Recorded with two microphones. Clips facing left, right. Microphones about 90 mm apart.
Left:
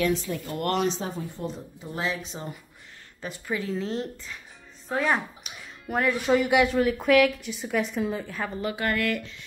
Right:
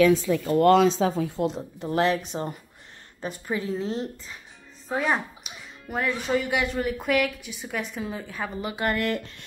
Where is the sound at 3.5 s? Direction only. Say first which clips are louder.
Right 1 dB; 25° right (ahead or behind).